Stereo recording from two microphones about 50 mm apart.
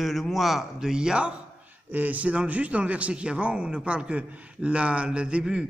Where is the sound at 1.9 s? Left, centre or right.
Right.